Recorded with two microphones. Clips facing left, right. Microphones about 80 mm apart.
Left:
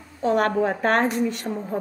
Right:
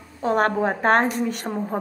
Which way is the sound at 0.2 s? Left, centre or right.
Right.